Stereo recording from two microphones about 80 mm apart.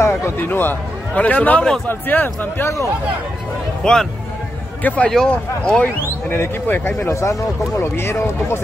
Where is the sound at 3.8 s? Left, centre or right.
Centre.